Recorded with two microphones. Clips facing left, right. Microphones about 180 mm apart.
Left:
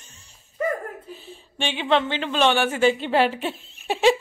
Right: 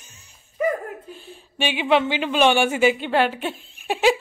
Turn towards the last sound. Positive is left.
turn(degrees=0)  # may be behind; listen again after turning